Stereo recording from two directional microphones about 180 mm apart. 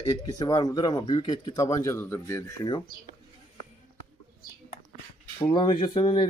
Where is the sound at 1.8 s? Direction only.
15° left (ahead or behind).